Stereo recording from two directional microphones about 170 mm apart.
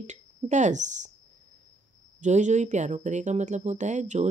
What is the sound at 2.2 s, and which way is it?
Speech, 45° right (ahead or behind).